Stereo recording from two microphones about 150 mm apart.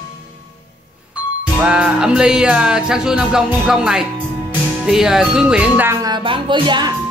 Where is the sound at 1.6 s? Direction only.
5° right (ahead or behind).